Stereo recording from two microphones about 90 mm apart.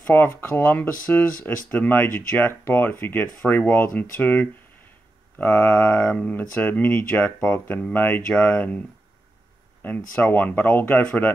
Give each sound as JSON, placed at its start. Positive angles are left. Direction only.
{"t": 0.0, "sound": "speech", "side_deg": 25}
{"t": 9.8, "sound": "speech", "side_deg": 20}